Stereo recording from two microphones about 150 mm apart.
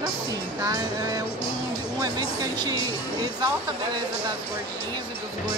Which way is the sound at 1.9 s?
25° right (ahead or behind).